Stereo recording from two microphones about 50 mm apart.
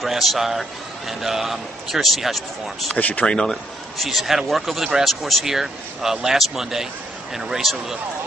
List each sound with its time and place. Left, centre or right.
0.0 s a man's voice: centre
3.0 s speech: left
3.3 s a man's voice: centre
4.0 s a man's voice: centre